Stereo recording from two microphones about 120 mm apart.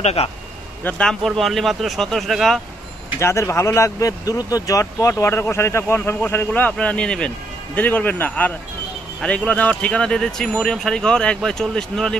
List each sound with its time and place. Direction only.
0.0 s speech: 60° left (ahead or behind)
0.8 s speech: 5° left (ahead or behind)
3.2 s speech: 25° left (ahead or behind); by 12.2 s 5° left (ahead or behind)